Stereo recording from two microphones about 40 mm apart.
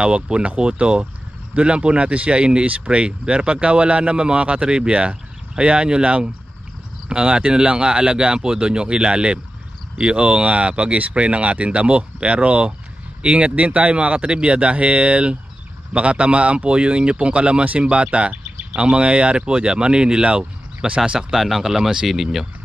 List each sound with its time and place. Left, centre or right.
0.0 s speech: right
21.4 s speech: centre